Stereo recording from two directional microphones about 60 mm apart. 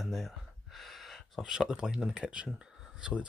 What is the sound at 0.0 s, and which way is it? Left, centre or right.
Gasp, centre.